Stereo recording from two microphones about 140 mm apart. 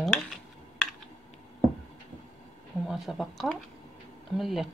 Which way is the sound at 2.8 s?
Centre (ahead or behind).